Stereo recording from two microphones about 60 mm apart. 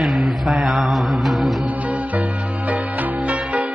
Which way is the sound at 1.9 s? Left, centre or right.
Right.